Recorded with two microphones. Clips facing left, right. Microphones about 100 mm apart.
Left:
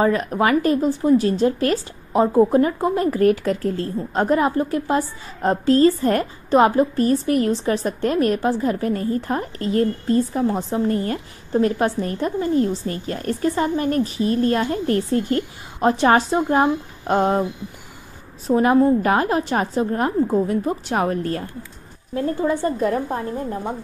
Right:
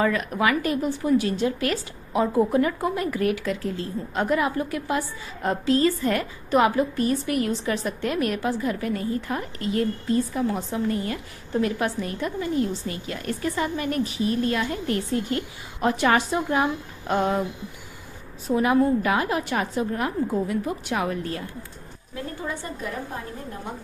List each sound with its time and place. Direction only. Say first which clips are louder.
0.0 s speech: left 4 dB; 35° left (ahead or behind)
18.5 s speech: left 5 dB; 35° left (ahead or behind)